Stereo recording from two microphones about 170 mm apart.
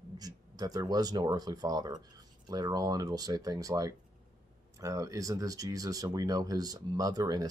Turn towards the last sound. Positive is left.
turn(degrees=-25)  # may be behind; listen again after turning